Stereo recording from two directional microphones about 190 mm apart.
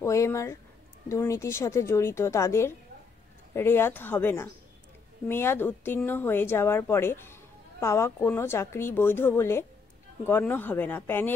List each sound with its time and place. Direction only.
0.0 s a woman's voice: 15° left (ahead or behind)